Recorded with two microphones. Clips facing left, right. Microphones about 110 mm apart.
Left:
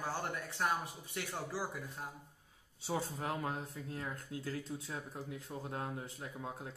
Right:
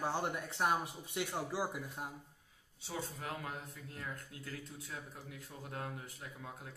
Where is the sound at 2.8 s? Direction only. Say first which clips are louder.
Left 5 dB; 35° left (ahead or behind).